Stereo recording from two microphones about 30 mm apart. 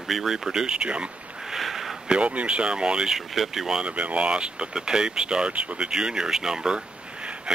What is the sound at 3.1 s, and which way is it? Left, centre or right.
Speech, centre.